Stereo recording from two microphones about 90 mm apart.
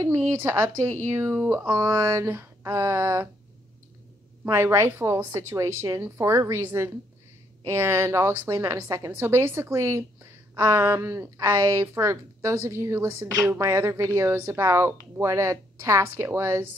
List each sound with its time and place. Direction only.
0.0 s speech: 30° right (ahead or behind)
4.5 s a woman's voice: 30° right (ahead or behind)
9.1 s a woman's voice: 25° right (ahead or behind)